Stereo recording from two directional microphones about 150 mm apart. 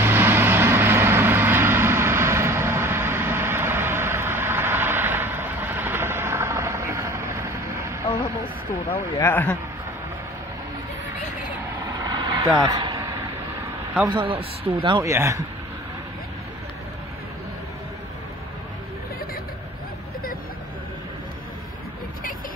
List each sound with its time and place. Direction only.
0.0 s vehicle: 15° right (ahead or behind)
8.9 s speech: 15° left (ahead or behind)
12.0 s vehicle: 25° right (ahead or behind)
14.0 s speech: 35° right (ahead or behind)
15.0 s speech: 20° right (ahead or behind)